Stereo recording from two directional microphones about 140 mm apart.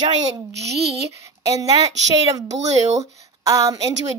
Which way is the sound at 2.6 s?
55° right (ahead or behind).